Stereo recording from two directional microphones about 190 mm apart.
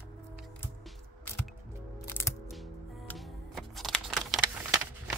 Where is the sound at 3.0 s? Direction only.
Centre (ahead or behind).